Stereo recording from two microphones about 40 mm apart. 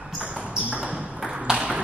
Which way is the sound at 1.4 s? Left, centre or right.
Centre.